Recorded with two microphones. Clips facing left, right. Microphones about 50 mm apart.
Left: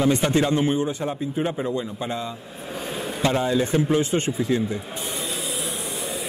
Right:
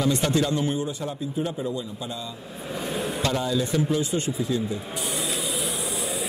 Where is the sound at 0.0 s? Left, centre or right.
Left.